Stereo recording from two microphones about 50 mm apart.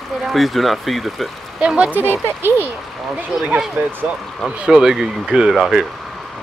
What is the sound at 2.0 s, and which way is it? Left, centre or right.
Speech, right.